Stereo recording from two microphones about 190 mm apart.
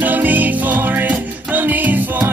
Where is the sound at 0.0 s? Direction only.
10° right (ahead or behind).